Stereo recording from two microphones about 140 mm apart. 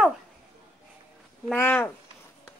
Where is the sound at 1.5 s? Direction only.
15° left (ahead or behind).